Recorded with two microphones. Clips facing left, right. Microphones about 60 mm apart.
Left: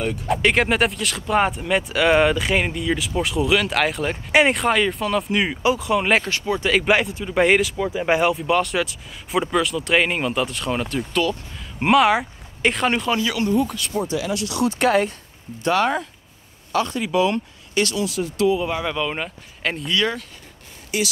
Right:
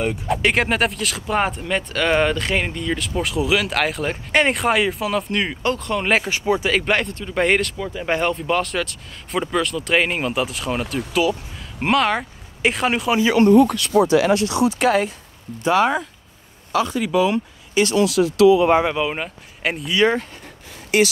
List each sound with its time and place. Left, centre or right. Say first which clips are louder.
0.3 s speech: left 1 dB; centre
6.3 s speech: right 3 dB; centre
6.6 s speech: left 1 dB; centre
13.1 s speech: right 4 dB; right
13.5 s speech: right 8 dB; right
14.3 s speech: right 7 dB; right
14.7 s speech: even; centre
17.9 s speech: right 7 dB; right
18.9 s speech: right 2 dB; centre
19.9 s speech: right 6 dB; right
20.9 s speech: right 7 dB; right